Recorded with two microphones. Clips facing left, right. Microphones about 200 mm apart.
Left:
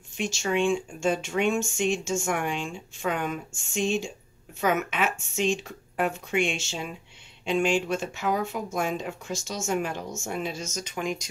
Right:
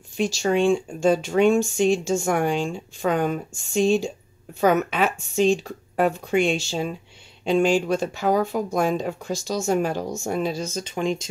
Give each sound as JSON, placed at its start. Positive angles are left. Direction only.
{"t": 0.2, "sound": "speech", "side_deg": -35}